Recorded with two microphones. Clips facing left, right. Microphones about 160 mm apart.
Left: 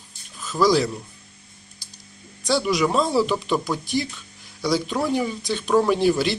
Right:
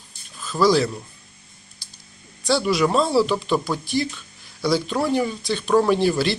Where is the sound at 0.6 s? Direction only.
15° left (ahead or behind).